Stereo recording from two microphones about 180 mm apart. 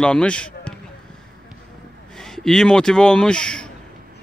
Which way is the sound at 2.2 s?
Centre (ahead or behind).